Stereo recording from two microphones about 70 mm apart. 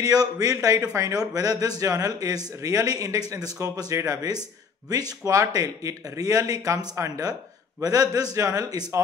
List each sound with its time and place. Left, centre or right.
0.0 s a man's voice: right
5.4 s speech: right
7.8 s a man's voice: right